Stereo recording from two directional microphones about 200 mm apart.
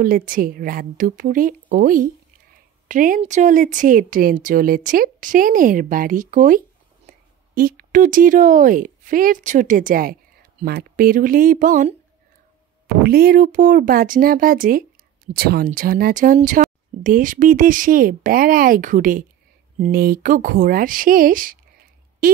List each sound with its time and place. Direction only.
0.0 s a woman's voice: 45° right (ahead or behind)
13.0 s a woman's voice: 50° right (ahead or behind)